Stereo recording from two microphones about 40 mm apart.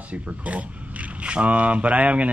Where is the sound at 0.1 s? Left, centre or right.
Right.